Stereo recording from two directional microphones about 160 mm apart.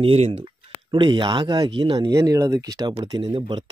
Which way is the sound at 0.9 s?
30° right (ahead or behind).